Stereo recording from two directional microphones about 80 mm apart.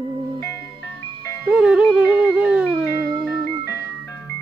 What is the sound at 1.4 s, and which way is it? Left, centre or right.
Music, centre.